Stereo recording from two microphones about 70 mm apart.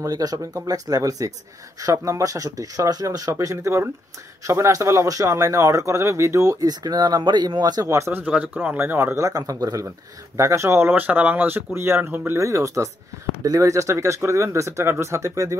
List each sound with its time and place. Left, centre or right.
0.0 s speech: right
6.7 s speech: right
7.8 s speech: right
8.3 s speech: centre
8.7 s speech: right
9.1 s speech: right
10.3 s speech: right
10.9 s speech: right
12.1 s speech: right
12.4 s speech: right